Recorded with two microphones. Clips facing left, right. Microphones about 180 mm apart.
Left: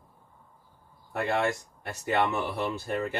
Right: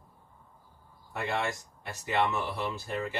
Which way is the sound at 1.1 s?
55° left (ahead or behind).